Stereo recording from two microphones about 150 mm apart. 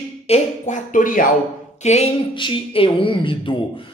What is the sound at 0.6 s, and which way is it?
Speech, 55° left (ahead or behind).